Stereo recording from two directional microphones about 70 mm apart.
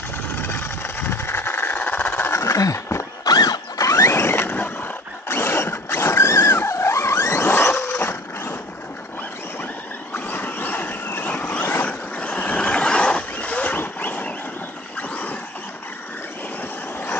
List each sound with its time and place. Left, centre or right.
0.4 s vehicle: left
1.1 s engine: left
2.2 s horse: left
3.3 s mechanisms: left
4.1 s vehicle: left
8.0 s a sound: left
10.1 s a sound: left
11.2 s vehicle: centre
11.7 s a sound: centre